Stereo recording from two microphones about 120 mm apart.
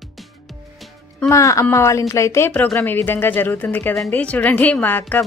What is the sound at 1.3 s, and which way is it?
Speech, 25° left (ahead or behind).